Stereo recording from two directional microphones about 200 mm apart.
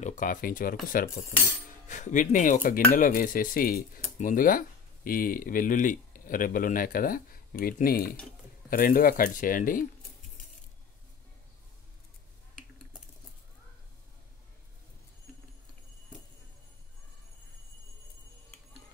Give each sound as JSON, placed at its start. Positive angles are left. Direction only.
{"t": 0.0, "sound": "speech", "side_deg": 40}